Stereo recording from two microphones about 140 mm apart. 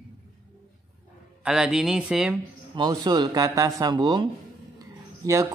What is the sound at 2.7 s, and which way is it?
A man's voice, 30° right (ahead or behind).